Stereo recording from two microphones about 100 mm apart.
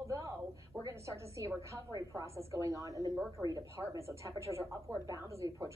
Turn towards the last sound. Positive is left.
turn(degrees=-30)  # may be behind; listen again after turning